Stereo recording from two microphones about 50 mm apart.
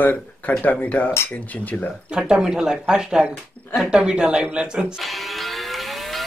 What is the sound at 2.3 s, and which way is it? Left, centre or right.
Speech, centre.